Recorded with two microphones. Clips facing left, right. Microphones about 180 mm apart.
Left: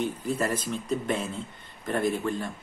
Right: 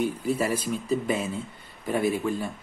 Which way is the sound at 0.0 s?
10° right (ahead or behind).